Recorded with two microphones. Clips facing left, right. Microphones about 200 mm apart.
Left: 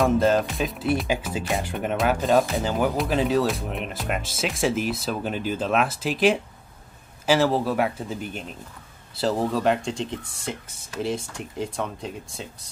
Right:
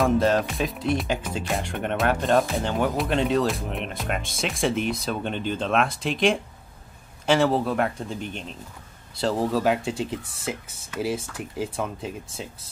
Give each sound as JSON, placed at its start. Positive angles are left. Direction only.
{"t": 0.0, "sound": "speech", "side_deg": 0}